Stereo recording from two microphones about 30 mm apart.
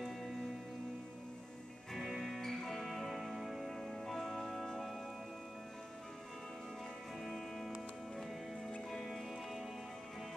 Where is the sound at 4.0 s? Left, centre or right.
Centre.